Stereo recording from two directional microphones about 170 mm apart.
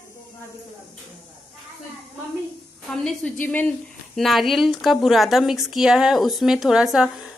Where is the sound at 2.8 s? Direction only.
Centre (ahead or behind).